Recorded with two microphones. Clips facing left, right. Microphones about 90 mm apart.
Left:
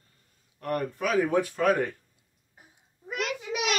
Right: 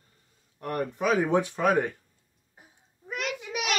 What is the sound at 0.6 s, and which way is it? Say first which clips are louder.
Speech: even; 20° right (ahead or behind).